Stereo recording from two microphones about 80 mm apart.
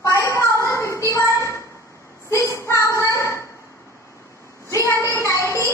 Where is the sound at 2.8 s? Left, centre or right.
Left.